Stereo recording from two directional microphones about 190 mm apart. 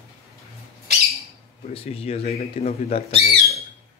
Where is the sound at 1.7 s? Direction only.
30° left (ahead or behind).